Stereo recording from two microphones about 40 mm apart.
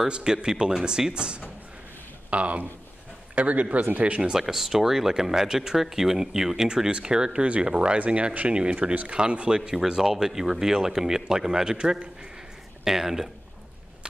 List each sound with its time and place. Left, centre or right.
0.1 s speech: right
2.3 s speech: right
4.3 s speech: centre
7.4 s speech: right
9.1 s speech: right